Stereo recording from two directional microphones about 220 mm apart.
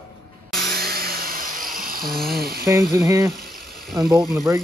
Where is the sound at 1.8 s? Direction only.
40° right (ahead or behind).